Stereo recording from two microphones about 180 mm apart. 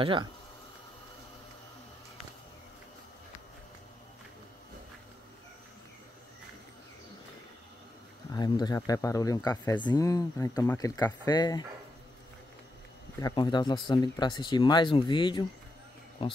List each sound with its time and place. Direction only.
0.0 s speech: 30° right (ahead or behind)
8.3 s speech: 20° left (ahead or behind)
13.2 s speech: 25° left (ahead or behind)